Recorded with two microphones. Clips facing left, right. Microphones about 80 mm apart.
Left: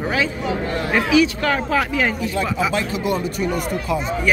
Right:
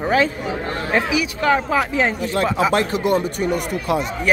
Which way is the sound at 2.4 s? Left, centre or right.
Right.